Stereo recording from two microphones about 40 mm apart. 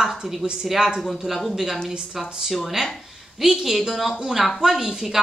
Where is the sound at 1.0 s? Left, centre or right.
Centre.